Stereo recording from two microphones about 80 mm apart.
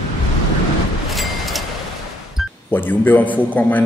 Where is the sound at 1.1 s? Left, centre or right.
Centre.